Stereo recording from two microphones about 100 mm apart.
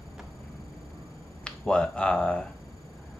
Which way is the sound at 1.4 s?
10° left (ahead or behind).